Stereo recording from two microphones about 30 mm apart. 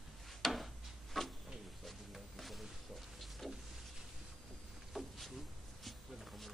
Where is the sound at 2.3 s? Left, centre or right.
Centre.